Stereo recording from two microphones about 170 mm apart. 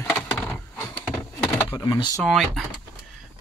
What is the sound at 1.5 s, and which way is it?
Speech, 15° left (ahead or behind).